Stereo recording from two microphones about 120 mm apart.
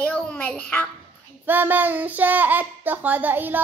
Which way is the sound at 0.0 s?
10° left (ahead or behind).